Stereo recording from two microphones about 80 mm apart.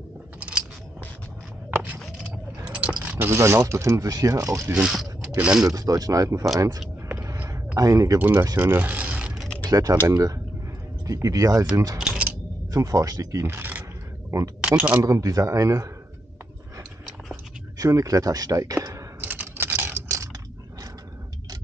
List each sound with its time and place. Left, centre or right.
0.4 s scissors: centre
1.7 s a sound: right
2.6 s a sound: centre
3.2 s speech: right
4.7 s speech: centre
5.7 s speech: right
7.3 s a sound: right
8.2 s speech: right
8.7 s a sound: right
9.7 s speech: right
13.5 s speech: right
15.0 s speech: right
17.7 s speech: right
19.2 s computer keyboard: right